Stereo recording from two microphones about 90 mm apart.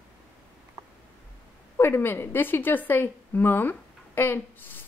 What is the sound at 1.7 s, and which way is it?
A woman's voice, 25° left (ahead or behind).